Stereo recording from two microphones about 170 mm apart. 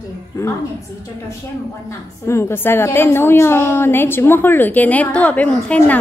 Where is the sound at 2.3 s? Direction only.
15° left (ahead or behind).